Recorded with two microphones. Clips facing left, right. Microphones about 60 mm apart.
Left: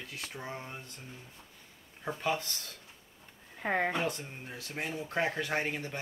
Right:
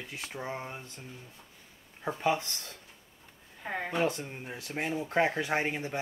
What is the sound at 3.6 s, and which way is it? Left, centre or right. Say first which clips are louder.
Speech: left 5 dB; left.